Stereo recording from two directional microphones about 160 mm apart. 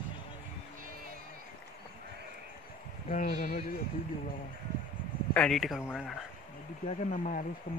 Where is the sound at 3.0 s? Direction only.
65° left (ahead or behind).